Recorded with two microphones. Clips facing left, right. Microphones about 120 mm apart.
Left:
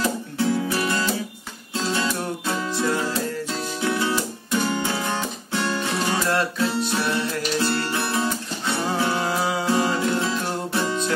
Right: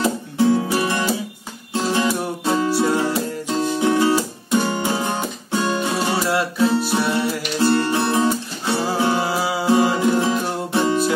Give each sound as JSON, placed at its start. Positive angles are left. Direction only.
{"t": 0.0, "sound": "music", "side_deg": -20}
{"t": 9.2, "sound": "music", "side_deg": -5}
{"t": 9.7, "sound": "music", "side_deg": -20}